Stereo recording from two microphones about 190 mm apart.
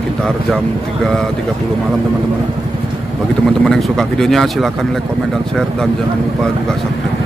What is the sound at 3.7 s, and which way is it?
Speech, centre (ahead or behind).